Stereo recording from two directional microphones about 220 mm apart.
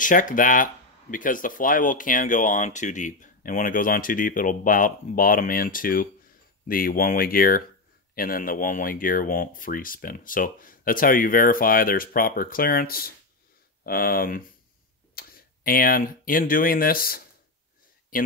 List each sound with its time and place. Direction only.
0.0 s speech: 35° left (ahead or behind)